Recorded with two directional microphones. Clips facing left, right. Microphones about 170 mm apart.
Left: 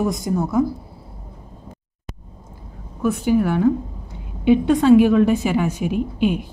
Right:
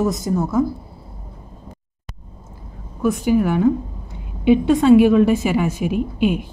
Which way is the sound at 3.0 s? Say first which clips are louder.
Right 1 dB; 10° right (ahead or behind).